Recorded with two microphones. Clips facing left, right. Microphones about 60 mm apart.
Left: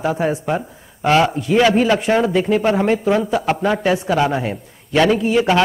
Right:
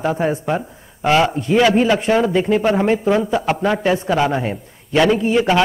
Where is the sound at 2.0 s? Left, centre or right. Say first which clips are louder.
Even; centre.